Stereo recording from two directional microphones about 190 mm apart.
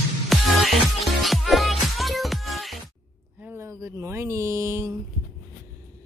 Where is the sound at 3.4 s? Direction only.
10° right (ahead or behind).